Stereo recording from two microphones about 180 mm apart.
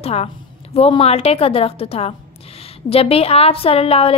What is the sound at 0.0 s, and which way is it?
A woman's voice, 35° left (ahead or behind).